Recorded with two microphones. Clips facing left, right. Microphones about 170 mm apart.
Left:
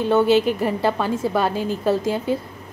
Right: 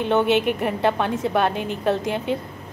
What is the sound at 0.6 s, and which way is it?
Speech, centre (ahead or behind).